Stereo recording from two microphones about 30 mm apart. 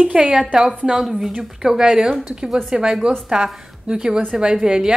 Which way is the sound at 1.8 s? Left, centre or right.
Right.